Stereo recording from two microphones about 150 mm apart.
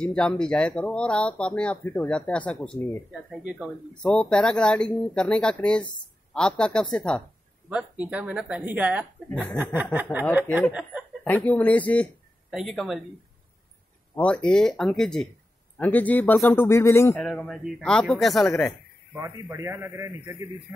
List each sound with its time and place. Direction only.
0.0 s speech: 5° left (ahead or behind)
3.1 s speech: 5° right (ahead or behind)
3.9 s speech: 5° left (ahead or behind)
7.7 s speech: 10° right (ahead or behind)
9.3 s speech: 10° left (ahead or behind)
10.7 s speech: 5° right (ahead or behind)
11.2 s speech: 10° left (ahead or behind)
12.4 s a man's voice: centre (ahead or behind)
14.1 s speech: 5° left (ahead or behind)
17.2 s speech: 5° left (ahead or behind)
19.5 s a man's voice: 20° right (ahead or behind)